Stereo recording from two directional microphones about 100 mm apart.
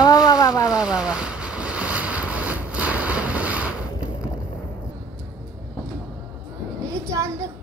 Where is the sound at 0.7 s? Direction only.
10° right (ahead or behind).